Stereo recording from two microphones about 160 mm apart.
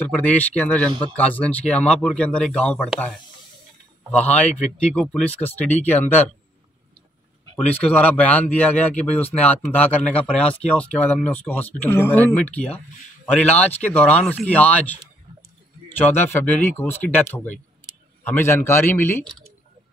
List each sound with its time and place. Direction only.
0.0 s speech: 10° left (ahead or behind)
7.5 s speech: 10° left (ahead or behind)
16.0 s speech: 10° left (ahead or behind)